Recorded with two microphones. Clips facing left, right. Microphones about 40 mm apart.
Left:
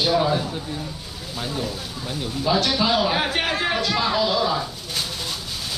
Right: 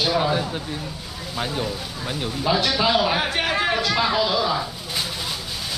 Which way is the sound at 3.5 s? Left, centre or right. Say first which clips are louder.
Right 1 dB; centre.